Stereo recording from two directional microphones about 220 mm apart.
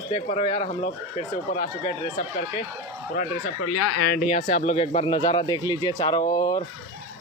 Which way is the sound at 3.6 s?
70° left (ahead or behind).